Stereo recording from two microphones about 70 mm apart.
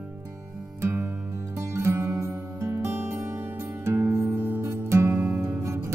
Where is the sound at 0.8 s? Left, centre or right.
Right.